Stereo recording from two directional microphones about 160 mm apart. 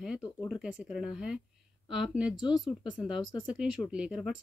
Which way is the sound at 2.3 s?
25° left (ahead or behind).